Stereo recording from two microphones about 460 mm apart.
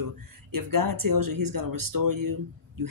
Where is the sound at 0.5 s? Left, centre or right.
Right.